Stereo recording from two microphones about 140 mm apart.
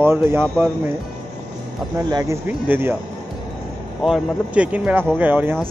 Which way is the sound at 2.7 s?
15° right (ahead or behind).